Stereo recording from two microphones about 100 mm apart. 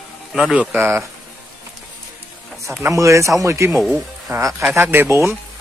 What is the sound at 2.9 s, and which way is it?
Speech, 30° right (ahead or behind).